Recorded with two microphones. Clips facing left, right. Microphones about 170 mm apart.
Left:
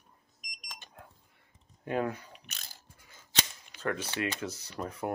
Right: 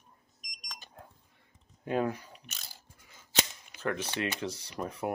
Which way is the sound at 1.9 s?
20° right (ahead or behind).